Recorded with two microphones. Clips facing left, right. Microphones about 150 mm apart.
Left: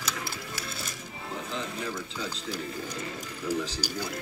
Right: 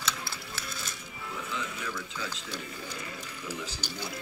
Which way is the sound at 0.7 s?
30° left (ahead or behind).